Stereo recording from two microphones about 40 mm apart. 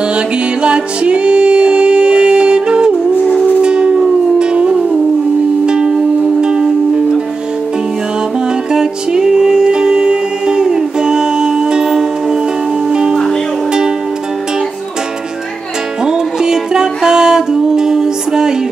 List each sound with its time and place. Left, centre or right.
0.1 s music: right
3.6 s howl: right
4.4 s music: right
8.7 s music: centre
16.1 s music: centre